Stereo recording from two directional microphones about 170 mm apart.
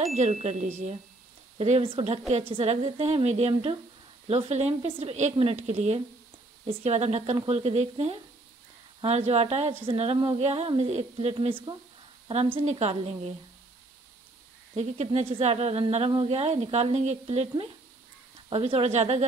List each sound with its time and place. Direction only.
0.1 s speech: 40° right (ahead or behind)
14.8 s speech: 40° right (ahead or behind)